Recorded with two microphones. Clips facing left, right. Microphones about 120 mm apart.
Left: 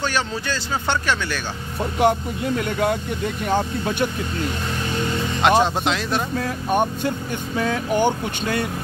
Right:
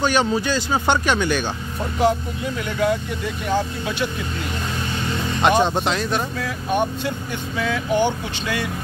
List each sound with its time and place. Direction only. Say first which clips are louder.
0.0 s speech: right 5 dB; 15° right (ahead or behind)
2.0 s speech: left 1 dB; 55° left (ahead or behind)
5.4 s speech: even; centre (ahead or behind)
6.3 s speech: left 2 dB; 45° left (ahead or behind)